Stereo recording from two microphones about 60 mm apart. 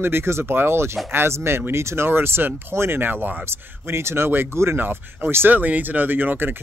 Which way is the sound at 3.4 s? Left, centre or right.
Right.